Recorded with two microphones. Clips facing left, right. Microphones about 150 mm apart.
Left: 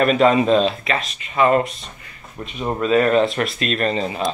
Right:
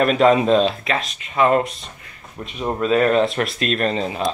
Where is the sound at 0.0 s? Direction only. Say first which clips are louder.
Even; centre (ahead or behind).